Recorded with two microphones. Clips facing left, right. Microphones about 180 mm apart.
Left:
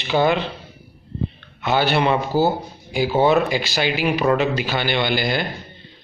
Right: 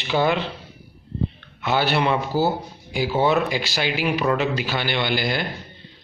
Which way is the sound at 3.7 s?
55° left (ahead or behind).